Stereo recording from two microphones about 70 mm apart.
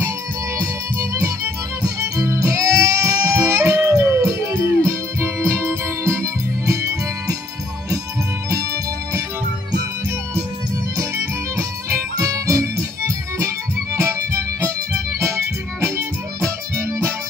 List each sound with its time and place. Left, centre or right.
0.6 s music: right
8.5 s music: right
11.5 s music: right
13.9 s music: right